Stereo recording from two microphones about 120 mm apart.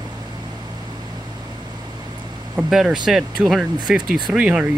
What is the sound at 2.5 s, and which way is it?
Speech, 5° right (ahead or behind).